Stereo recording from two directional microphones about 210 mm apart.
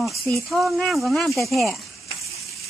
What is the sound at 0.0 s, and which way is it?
Speech, centre (ahead or behind).